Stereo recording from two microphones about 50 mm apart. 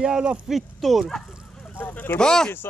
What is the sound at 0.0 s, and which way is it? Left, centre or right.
Speech, centre.